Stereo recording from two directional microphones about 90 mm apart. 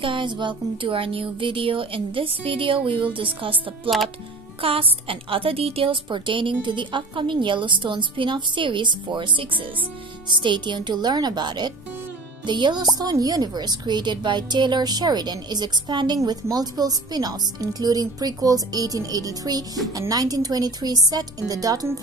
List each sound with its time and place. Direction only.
0.0 s a woman's voice: 65° right (ahead or behind)
4.6 s a woman's voice: 90° right; by 9.7 s 70° right (ahead or behind)
10.2 s a woman's voice: 60° right (ahead or behind); by 21.8 s 45° right (ahead or behind)